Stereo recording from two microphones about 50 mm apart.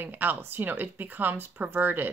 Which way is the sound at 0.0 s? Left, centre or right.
Right.